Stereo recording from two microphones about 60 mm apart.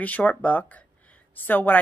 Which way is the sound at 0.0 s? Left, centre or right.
Left.